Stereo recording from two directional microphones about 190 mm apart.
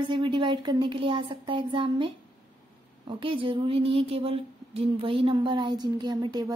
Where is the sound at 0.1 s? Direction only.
25° right (ahead or behind).